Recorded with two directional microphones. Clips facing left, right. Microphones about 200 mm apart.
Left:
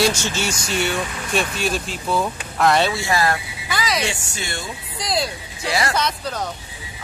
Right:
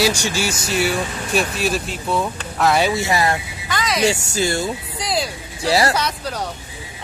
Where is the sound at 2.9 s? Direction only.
20° right (ahead or behind).